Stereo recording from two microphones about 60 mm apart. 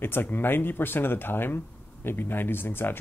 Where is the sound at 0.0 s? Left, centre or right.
Left.